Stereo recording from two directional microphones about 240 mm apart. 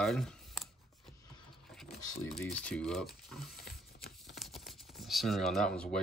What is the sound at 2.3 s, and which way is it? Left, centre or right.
Speech, centre.